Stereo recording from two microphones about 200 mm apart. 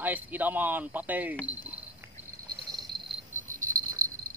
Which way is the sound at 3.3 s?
35° right (ahead or behind).